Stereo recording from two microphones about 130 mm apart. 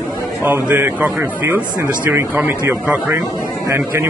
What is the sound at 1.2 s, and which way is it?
Speech, 20° right (ahead or behind).